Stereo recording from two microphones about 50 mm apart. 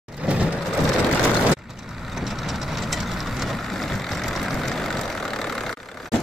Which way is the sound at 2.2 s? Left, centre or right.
Centre.